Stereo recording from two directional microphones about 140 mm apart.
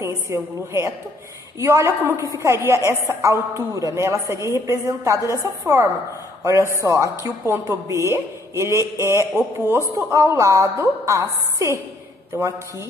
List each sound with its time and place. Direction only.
0.0 s a woman's voice: 20° right (ahead or behind)